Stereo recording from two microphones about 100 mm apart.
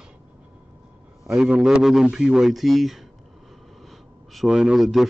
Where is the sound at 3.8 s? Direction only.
Centre (ahead or behind).